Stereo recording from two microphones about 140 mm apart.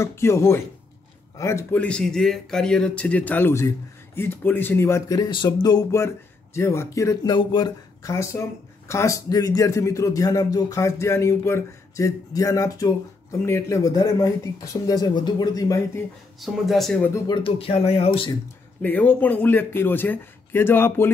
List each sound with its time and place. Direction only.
0.0 s speech: 20° left (ahead or behind)
7.3 s speech: 35° left (ahead or behind)
8.0 s speech: 20° left (ahead or behind)
16.3 s speech: centre (ahead or behind)
17.3 s speech: 40° left (ahead or behind)
18.8 s speech: 10° left (ahead or behind)